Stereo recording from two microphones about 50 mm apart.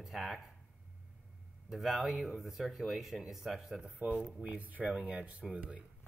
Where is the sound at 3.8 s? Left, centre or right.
Right.